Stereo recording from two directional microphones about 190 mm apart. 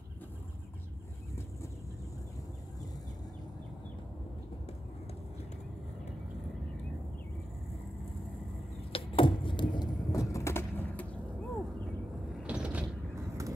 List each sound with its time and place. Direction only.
8.9 s a sound: 25° left (ahead or behind)
10.3 s vehicle: 15° left (ahead or behind)
12.4 s mechanisms: 5° right (ahead or behind)